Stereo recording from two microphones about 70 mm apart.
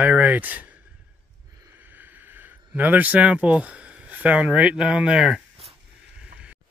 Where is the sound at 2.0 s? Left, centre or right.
Right; by 5.7 s centre.